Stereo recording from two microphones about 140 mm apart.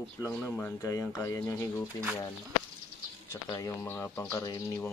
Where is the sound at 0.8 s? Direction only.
25° left (ahead or behind).